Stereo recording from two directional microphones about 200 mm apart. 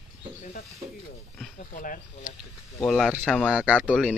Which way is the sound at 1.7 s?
45° left (ahead or behind).